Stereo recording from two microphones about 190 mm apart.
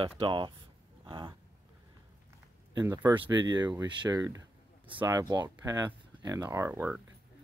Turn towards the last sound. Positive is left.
turn(degrees=-10)  # may be behind; listen again after turning